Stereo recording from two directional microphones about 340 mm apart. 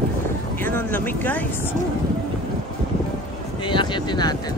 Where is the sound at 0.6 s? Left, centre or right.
Centre.